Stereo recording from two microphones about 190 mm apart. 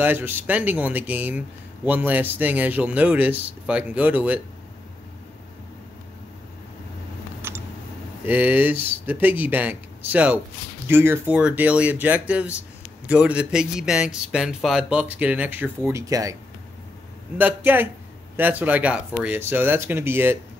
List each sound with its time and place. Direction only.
0.0 s speech: 10° right (ahead or behind)
8.3 s speech: 10° right (ahead or behind)
17.4 s speech: 10° right (ahead or behind)